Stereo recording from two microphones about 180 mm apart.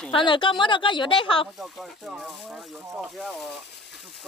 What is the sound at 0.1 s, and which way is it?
Speech, 30° left (ahead or behind).